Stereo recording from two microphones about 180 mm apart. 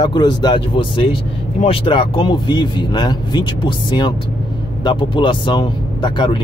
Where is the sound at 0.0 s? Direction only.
25° left (ahead or behind).